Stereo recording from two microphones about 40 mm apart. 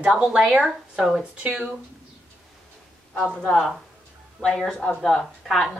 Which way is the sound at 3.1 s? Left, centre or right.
Centre.